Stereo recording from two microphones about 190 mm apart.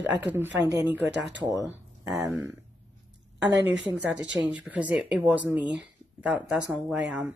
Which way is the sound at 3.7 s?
5° right (ahead or behind).